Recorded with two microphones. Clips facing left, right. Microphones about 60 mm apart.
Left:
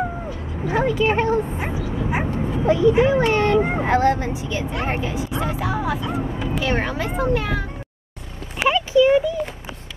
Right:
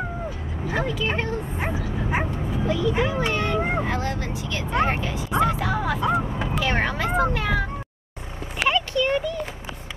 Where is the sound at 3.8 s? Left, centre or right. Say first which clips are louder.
Left 9 dB; left.